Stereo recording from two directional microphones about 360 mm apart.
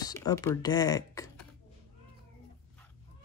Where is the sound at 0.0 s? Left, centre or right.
Centre.